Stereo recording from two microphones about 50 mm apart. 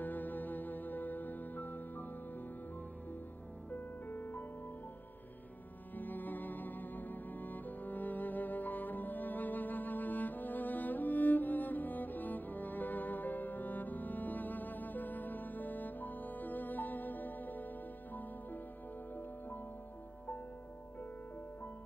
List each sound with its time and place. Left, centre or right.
0.0 s music: left
3.7 s music: left
5.9 s music: left